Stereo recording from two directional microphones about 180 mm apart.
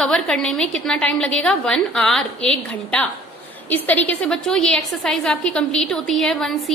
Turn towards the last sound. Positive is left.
turn(degrees=0)  # may be behind; listen again after turning